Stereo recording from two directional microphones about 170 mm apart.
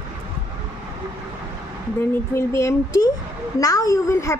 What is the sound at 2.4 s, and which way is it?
Speech, 15° left (ahead or behind).